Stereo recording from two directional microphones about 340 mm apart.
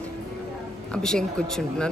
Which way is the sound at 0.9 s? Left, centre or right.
Centre.